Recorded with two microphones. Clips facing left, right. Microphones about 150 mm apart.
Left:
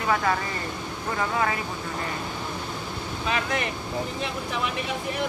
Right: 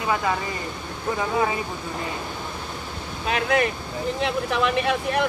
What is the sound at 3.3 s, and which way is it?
Speech, 65° right (ahead or behind).